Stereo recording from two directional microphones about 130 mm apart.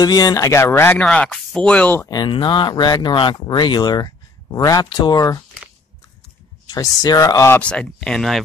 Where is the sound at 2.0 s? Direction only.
35° left (ahead or behind).